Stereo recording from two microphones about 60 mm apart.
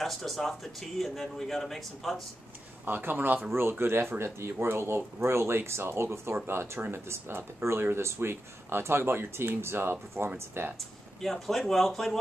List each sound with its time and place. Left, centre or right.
0.0 s speech: centre
2.8 s speech: right
11.1 s speech: centre